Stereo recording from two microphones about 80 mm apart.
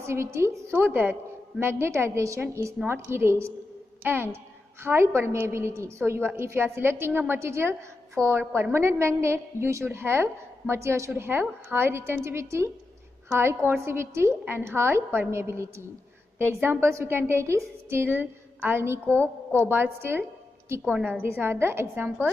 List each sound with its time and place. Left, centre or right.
0.0 s a woman's voice: right
2.9 s a woman's voice: right
16.8 s a woman's voice: right
20.9 s a woman's voice: centre
21.3 s a woman's voice: right